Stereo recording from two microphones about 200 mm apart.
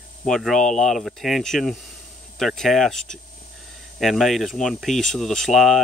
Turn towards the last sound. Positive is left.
turn(degrees=0)  # may be behind; listen again after turning